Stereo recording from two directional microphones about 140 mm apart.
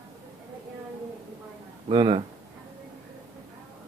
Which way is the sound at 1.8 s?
35° right (ahead or behind).